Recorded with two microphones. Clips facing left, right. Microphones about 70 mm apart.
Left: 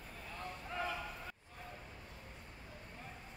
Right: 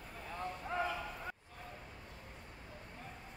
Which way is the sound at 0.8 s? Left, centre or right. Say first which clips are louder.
Right 1 dB; centre.